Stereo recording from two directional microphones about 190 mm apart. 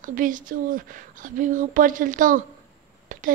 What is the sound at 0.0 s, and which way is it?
A woman's voice, 45° right (ahead or behind).